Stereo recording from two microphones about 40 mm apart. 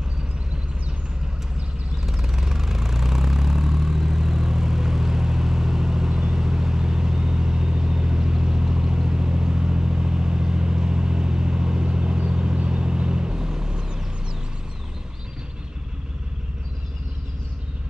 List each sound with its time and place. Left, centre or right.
2.0 s vehicle: centre